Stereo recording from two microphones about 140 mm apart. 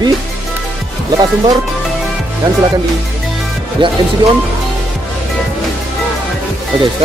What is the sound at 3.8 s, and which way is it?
Speech, 35° right (ahead or behind).